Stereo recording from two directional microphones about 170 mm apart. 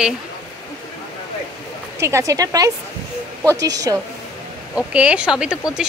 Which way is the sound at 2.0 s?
15° right (ahead or behind).